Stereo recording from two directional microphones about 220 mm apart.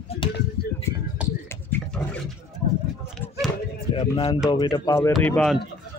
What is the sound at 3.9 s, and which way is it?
Speech, 25° left (ahead or behind).